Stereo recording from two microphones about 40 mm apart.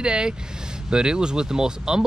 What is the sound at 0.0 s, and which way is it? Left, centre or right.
Speech, right.